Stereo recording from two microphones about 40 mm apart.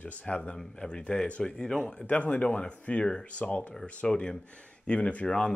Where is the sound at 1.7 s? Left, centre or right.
Left.